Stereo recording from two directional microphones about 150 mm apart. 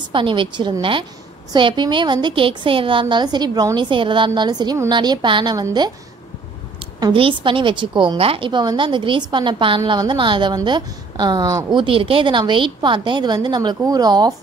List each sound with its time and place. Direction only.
0.1 s a woman's voice: 35° right (ahead or behind)
7.0 s a woman's voice: 35° right (ahead or behind)
11.8 s a woman's voice: 35° right (ahead or behind)